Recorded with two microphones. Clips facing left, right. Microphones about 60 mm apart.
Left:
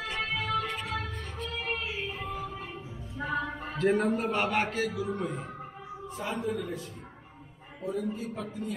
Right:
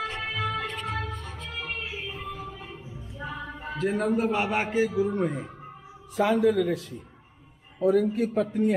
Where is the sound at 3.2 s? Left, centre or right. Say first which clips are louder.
Left 5 dB; left.